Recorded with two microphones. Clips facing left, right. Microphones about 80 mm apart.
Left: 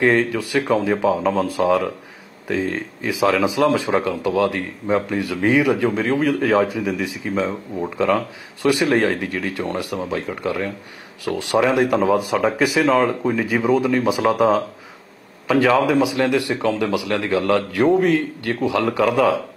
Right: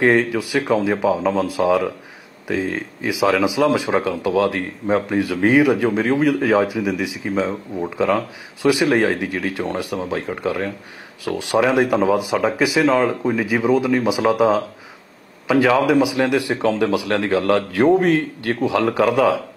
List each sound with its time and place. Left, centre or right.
0.0 s speech: centre
2.4 s speech: centre
8.8 s speech: centre
9.2 s a man's voice: centre
13.3 s a man's voice: centre
15.8 s a man's voice: centre